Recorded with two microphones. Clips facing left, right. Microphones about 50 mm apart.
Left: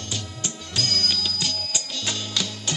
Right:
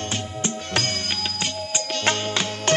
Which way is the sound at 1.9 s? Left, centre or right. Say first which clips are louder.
Right 10 dB; right.